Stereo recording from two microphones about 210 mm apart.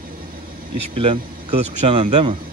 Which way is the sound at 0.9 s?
25° right (ahead or behind).